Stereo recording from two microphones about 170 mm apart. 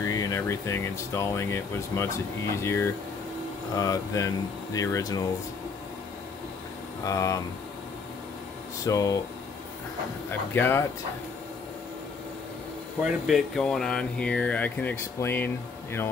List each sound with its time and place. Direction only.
0.0 s speech: 20° left (ahead or behind)
7.1 s speech: 20° left (ahead or behind)
8.8 s speech: 20° left (ahead or behind)
10.5 s speech: 10° left (ahead or behind)
13.0 s speech: centre (ahead or behind)